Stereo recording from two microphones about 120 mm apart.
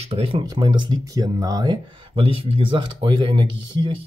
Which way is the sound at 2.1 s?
50° right (ahead or behind).